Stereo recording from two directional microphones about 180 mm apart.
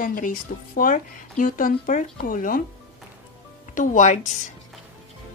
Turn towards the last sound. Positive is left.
turn(degrees=40)  # may be behind; listen again after turning